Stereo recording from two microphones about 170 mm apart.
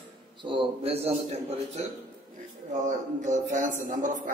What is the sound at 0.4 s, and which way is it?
A man's voice, 30° right (ahead or behind).